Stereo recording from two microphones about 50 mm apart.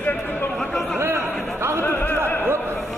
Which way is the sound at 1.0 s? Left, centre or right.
Right.